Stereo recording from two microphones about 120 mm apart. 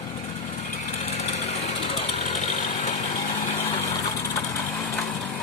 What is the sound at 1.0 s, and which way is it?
Vehicle, 60° left (ahead or behind).